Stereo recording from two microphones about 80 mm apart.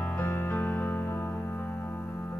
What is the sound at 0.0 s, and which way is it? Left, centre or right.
Music, centre.